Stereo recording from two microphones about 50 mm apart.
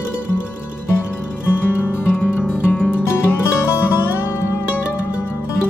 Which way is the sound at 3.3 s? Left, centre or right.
Left.